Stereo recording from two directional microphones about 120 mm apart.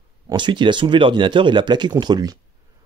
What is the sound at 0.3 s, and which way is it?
Speech, 40° right (ahead or behind).